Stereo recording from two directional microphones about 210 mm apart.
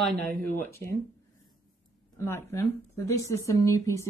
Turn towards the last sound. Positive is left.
turn(degrees=15)  # may be behind; listen again after turning